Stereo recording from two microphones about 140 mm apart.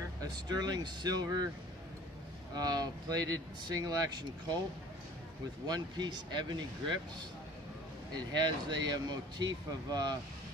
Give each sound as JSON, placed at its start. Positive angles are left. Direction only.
{"t": 0.2, "sound": "speech", "side_deg": -30}
{"t": 2.5, "sound": "speech", "side_deg": -30}
{"t": 5.7, "sound": "speech", "side_deg": -30}
{"t": 8.1, "sound": "speech", "side_deg": -30}